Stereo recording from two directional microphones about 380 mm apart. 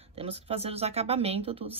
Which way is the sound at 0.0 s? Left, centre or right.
Centre.